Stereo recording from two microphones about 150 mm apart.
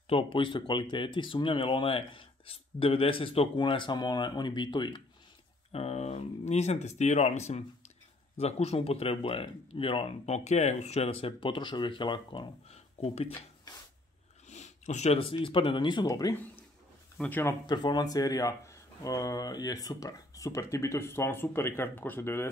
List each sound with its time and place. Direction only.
0.1 s speech: 35° left (ahead or behind)
5.7 s speech: 45° left (ahead or behind)
13.0 s speech: 40° left (ahead or behind)
14.5 s speech: 50° left (ahead or behind); by 16.3 s 25° left (ahead or behind)
17.2 s speech: 15° left (ahead or behind)
17.6 s speech: 30° left (ahead or behind)